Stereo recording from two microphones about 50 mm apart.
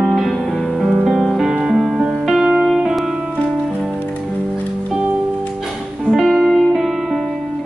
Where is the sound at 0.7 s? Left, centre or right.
Centre.